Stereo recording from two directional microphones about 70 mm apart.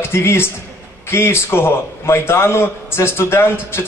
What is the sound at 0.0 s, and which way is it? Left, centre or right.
A man's voice, left.